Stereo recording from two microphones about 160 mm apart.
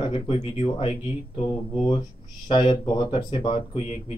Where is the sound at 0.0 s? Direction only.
30° left (ahead or behind).